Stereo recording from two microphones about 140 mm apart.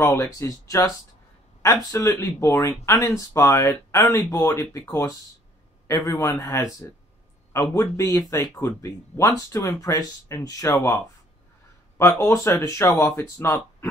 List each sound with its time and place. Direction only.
0.0 s speech: 20° left (ahead or behind)
5.9 s speech: 20° left (ahead or behind)
7.7 s speech: 25° left (ahead or behind)
12.0 s speech: 20° left (ahead or behind)